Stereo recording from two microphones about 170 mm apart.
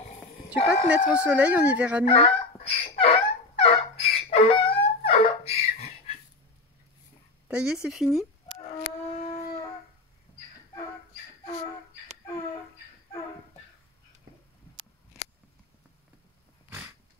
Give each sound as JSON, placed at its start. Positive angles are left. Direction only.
{"t": 0.8, "sound": "speech", "side_deg": -5}
{"t": 2.0, "sound": "fowl", "side_deg": 35}
{"t": 7.4, "sound": "speech", "side_deg": -5}